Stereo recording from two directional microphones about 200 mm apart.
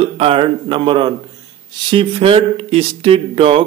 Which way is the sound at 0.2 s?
25° right (ahead or behind).